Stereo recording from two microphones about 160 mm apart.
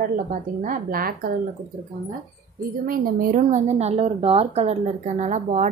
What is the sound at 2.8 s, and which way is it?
A woman's voice, 65° right (ahead or behind).